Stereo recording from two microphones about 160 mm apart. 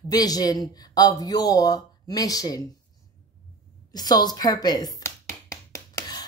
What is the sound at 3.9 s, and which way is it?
Speech, 25° left (ahead or behind).